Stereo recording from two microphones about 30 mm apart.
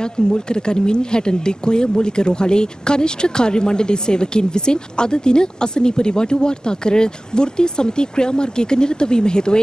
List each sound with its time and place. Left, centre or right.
0.0 s speech: left